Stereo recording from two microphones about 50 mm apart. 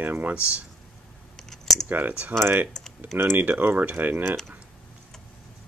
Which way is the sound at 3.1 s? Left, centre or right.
Right.